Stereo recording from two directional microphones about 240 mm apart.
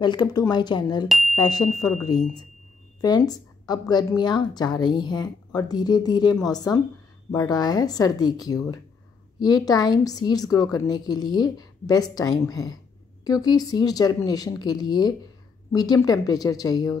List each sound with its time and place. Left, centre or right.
0.0 s a woman's voice: centre
1.0 s speech: centre
1.3 s a woman's voice: centre